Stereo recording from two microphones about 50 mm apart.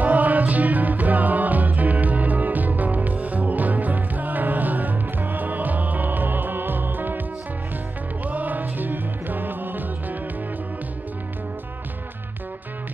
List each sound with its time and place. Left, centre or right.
0.0 s music: right
8.3 s music: right